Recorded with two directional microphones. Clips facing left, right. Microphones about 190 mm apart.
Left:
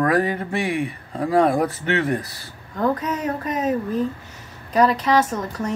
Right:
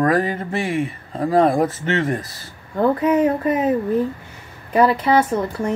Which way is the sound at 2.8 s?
25° right (ahead or behind).